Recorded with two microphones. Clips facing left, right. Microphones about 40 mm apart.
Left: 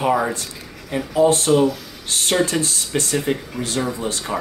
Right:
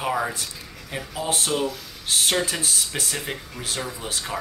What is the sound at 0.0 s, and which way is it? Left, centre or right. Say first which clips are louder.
Speech: left 6 dB; centre.